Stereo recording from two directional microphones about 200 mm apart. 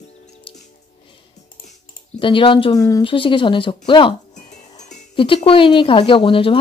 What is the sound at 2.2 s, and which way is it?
Speech, 25° left (ahead or behind).